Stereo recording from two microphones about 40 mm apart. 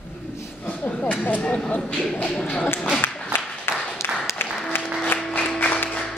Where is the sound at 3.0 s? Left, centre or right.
Left.